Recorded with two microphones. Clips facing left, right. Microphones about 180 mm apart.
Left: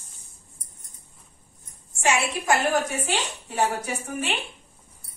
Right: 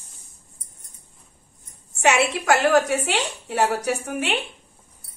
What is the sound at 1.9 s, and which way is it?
A woman's voice, 70° right (ahead or behind).